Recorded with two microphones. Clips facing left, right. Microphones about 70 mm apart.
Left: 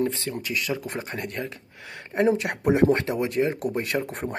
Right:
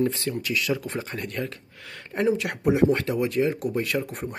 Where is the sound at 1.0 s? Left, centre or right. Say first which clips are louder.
Even; left.